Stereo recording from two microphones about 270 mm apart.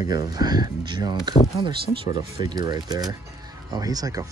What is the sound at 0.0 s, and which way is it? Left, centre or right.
Speech, centre.